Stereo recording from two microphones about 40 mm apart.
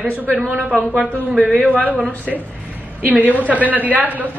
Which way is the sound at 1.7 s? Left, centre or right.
Right.